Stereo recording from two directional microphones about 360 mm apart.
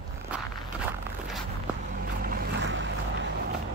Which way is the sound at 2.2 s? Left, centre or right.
Right.